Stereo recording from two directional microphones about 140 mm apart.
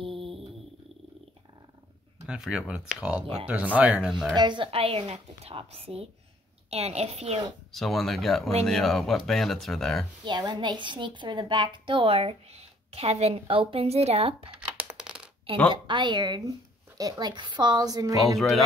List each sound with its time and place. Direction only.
0.0 s a sound: 40° right (ahead or behind)
2.2 s speech: 5° right (ahead or behind)
4.4 s a woman's voice: 35° right (ahead or behind)
7.7 s speech: centre (ahead or behind)
10.2 s a woman's voice: 35° right (ahead or behind)
14.5 s typing: 10° right (ahead or behind)
15.7 s a woman's voice: 35° right (ahead or behind)